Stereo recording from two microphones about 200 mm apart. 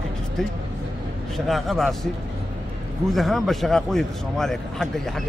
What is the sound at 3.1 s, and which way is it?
Speech, centre (ahead or behind).